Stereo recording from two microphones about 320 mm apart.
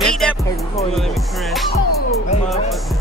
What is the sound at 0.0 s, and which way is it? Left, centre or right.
Music, centre.